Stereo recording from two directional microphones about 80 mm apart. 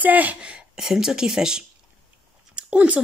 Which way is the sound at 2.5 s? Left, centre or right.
Centre.